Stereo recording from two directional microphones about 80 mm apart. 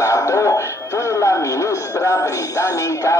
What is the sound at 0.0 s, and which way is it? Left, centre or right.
Speech, left.